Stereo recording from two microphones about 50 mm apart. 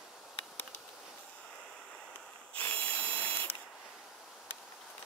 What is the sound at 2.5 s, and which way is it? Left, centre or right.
Ratchet, left.